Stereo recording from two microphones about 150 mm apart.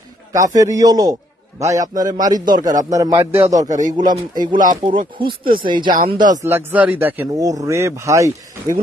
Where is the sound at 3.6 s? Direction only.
55° right (ahead or behind).